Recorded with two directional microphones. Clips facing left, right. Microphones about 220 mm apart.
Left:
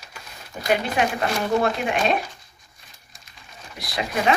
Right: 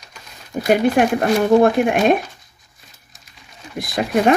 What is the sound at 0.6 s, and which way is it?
Speech, 50° right (ahead or behind).